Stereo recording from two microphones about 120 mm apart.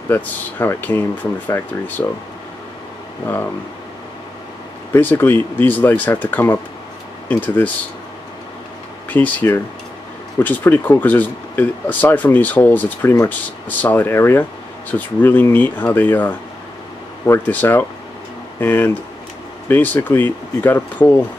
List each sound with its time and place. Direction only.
0.1 s speech: 15° left (ahead or behind)
4.9 s speech: 20° left (ahead or behind)
9.1 s speech: 15° left (ahead or behind)